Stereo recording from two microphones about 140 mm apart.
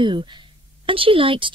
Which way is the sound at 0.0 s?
35° right (ahead or behind).